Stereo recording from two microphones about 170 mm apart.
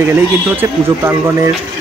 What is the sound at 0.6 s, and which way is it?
Speech, 15° right (ahead or behind).